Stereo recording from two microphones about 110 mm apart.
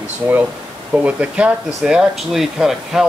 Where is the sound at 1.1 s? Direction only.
10° right (ahead or behind).